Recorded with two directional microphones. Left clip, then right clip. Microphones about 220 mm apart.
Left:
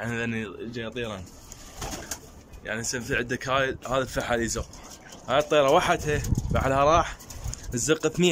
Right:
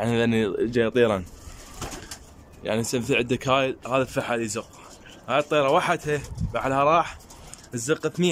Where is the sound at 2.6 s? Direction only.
20° right (ahead or behind).